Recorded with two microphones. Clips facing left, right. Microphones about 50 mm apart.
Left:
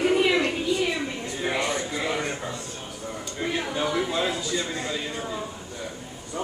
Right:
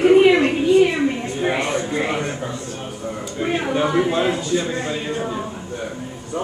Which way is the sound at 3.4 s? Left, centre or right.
Right.